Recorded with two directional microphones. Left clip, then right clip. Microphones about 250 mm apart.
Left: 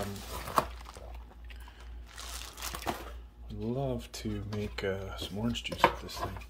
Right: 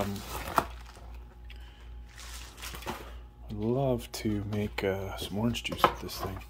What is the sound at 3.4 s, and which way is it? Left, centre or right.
Speech, right.